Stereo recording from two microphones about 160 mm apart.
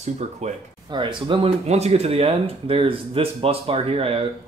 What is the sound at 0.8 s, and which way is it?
Speech, 30° right (ahead or behind).